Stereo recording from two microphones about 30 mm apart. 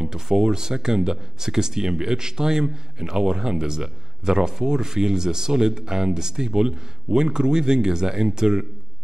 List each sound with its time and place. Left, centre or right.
0.0 s speech: right